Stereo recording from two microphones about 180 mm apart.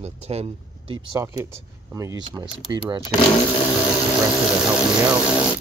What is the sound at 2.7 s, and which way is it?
Speech, 25° right (ahead or behind).